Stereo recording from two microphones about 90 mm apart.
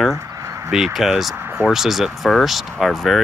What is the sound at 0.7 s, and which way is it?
Speech, 5° right (ahead or behind).